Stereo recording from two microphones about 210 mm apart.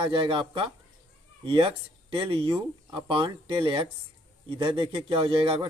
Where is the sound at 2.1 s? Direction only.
25° right (ahead or behind).